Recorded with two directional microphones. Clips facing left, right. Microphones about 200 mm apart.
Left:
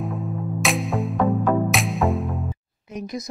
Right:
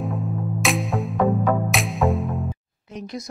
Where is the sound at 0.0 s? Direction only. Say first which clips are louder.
Right 1 dB; centre (ahead or behind).